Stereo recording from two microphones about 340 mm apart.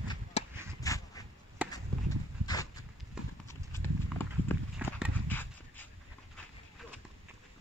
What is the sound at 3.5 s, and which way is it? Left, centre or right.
Clip-clop, centre.